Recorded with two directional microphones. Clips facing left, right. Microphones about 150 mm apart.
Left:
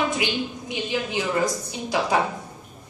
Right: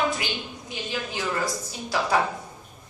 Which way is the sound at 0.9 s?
20° left (ahead or behind).